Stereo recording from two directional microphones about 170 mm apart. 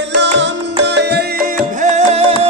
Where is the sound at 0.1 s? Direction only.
90° right.